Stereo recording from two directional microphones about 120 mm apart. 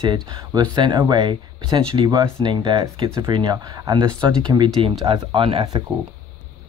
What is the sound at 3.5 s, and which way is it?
Speech, 30° right (ahead or behind).